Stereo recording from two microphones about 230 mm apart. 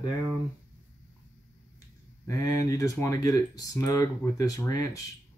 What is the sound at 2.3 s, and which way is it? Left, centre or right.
Speech, centre.